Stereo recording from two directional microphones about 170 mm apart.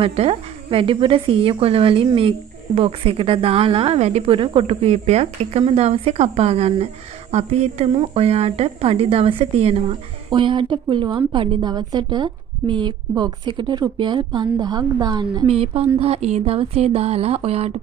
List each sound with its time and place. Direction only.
0.0 s speech: 35° right (ahead or behind)
15.4 s speech: 35° right (ahead or behind)